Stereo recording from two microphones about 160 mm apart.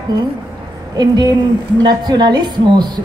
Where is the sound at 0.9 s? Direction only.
25° right (ahead or behind).